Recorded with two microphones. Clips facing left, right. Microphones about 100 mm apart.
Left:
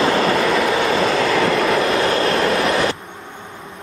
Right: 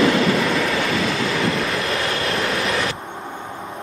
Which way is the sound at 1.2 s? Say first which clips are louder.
Left 5 dB; 90° left.